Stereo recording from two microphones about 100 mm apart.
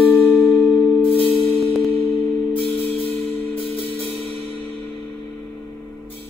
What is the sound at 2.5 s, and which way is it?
Music, 15° left (ahead or behind).